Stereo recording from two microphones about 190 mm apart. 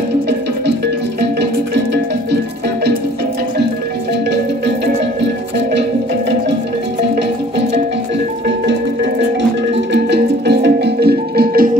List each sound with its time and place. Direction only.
9.9 s music: 65° right (ahead or behind)